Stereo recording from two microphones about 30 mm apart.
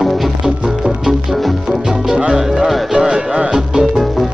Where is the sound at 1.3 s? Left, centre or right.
Centre.